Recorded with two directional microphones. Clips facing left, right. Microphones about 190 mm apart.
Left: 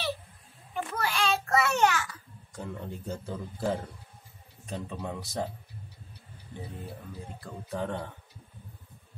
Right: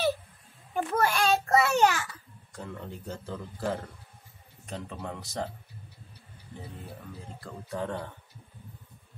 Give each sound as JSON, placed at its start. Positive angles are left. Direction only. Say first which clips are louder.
{"t": 0.9, "sound": "a sound", "louder": "right 4 dB", "side_deg": -45}
{"t": 2.5, "sound": "speech", "louder": "left 2 dB", "side_deg": 10}
{"t": 7.7, "sound": "speech", "louder": "even", "side_deg": 5}